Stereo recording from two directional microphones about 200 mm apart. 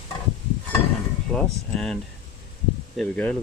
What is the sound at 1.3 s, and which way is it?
Speech, centre (ahead or behind).